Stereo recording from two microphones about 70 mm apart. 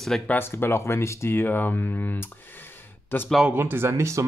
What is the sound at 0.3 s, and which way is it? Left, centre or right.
Speech, left.